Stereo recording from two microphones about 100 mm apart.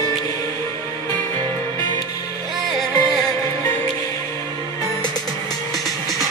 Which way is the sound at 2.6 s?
Centre (ahead or behind).